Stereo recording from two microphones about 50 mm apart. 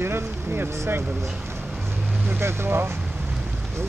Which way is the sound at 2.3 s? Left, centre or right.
Right.